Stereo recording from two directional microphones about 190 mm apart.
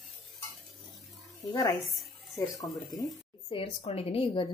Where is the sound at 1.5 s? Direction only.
15° left (ahead or behind).